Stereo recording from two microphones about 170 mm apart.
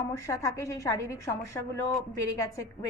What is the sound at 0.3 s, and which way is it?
A woman's voice, 20° left (ahead or behind).